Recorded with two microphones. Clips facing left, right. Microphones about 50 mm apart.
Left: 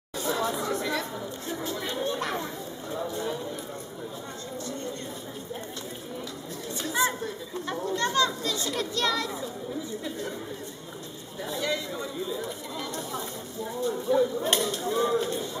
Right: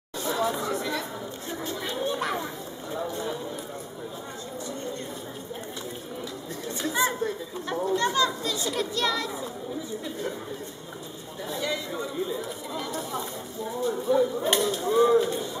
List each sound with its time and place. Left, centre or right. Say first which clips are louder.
0.2 s chatter: right 1 dB; centre
2.9 s a sound: right 1 dB; centre
6.9 s chatter: even; centre
7.6 s speech: right 3 dB; centre
12.4 s speech: right 1 dB; centre